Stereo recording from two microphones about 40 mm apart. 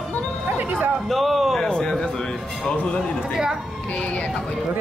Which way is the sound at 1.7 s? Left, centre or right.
Centre.